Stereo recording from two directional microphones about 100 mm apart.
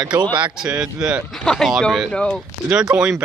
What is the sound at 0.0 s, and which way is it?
Speech, 45° right (ahead or behind).